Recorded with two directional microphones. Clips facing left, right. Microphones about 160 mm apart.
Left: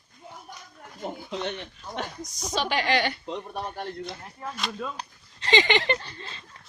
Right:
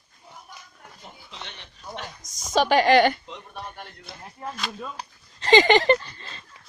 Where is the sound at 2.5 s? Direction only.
45° right (ahead or behind).